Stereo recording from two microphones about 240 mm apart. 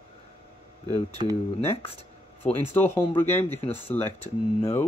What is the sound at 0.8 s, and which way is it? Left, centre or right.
Speech, centre.